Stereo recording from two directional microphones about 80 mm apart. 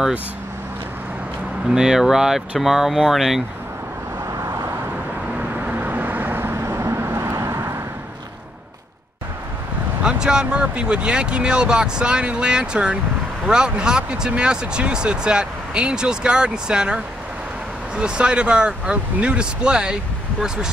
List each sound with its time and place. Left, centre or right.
1.7 s speech: centre
5.4 s vehicle: centre; by 7.7 s right
10.0 s speech: centre